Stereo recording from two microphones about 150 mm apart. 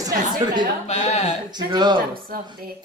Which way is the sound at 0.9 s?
45° left (ahead or behind).